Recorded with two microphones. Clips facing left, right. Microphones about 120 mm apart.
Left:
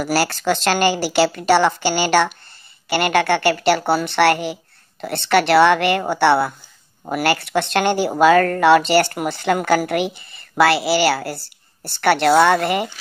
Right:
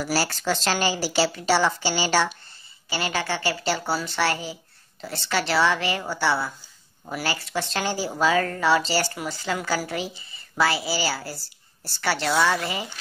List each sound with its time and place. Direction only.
0.0 s a woman's voice: 60° left (ahead or behind)